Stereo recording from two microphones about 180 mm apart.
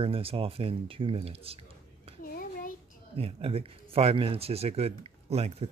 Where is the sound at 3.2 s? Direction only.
30° right (ahead or behind).